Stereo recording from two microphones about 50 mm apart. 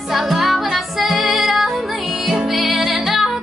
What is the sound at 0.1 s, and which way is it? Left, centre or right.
Music, centre.